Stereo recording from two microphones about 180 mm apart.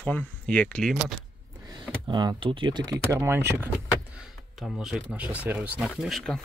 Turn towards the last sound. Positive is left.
turn(degrees=0)  # may be behind; listen again after turning